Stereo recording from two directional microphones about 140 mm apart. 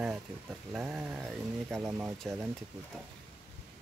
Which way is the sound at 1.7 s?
20° right (ahead or behind).